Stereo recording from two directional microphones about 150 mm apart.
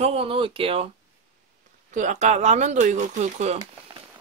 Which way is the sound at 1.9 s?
55° right (ahead or behind).